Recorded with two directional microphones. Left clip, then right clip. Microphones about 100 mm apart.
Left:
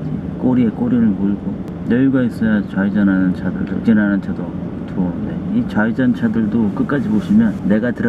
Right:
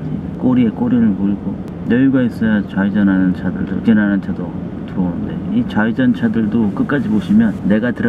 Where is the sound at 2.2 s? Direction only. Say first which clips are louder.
Right 1 dB; 25° right (ahead or behind).